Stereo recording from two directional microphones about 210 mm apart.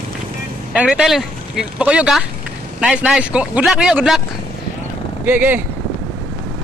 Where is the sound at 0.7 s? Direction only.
5° right (ahead or behind).